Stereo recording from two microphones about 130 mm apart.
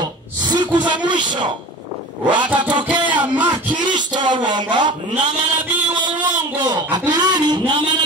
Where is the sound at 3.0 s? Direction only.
10° right (ahead or behind).